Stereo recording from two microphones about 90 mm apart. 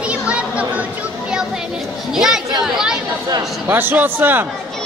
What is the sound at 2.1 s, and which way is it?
Speech, 5° right (ahead or behind).